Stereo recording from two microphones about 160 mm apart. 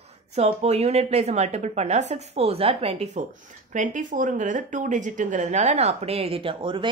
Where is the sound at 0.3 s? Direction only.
40° right (ahead or behind).